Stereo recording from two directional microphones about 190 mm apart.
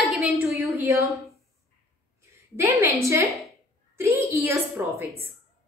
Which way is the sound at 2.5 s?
15° right (ahead or behind).